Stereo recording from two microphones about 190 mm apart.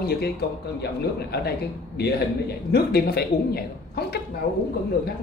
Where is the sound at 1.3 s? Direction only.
55° left (ahead or behind).